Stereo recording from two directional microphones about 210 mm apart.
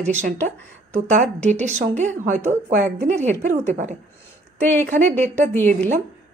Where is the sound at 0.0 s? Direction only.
35° right (ahead or behind).